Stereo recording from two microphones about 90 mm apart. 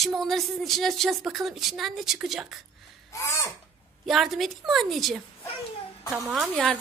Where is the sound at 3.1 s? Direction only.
35° left (ahead or behind).